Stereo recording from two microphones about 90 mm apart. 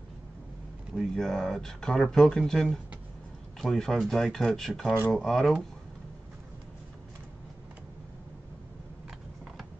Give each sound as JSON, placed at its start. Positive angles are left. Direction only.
{"t": 0.9, "sound": "speech", "side_deg": 5}